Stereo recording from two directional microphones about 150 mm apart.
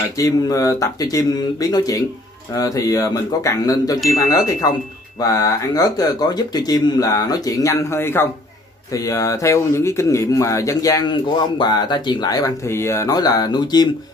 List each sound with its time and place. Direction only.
0.2 s speech: 25° left (ahead or behind)